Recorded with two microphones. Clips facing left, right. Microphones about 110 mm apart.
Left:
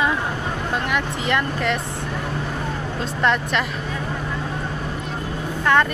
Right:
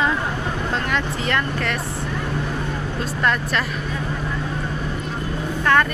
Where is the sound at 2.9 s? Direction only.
25° left (ahead or behind).